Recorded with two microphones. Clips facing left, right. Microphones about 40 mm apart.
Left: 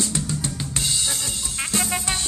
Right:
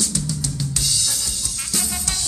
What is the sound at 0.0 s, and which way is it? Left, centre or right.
Drum kit, left.